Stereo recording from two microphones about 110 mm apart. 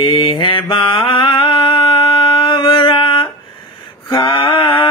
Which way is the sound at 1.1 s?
50° left (ahead or behind).